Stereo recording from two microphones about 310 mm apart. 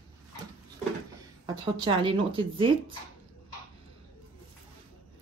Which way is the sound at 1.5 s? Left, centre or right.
Centre.